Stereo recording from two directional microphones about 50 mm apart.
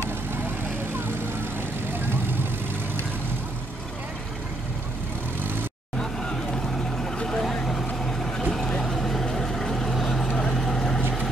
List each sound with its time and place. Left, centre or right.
0.9 s vehicle: right
7.0 s vehicle: centre